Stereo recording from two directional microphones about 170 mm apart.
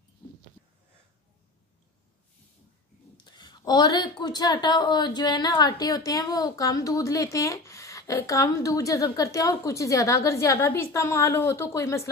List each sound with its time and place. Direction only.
3.3 s a woman's voice: 25° left (ahead or behind)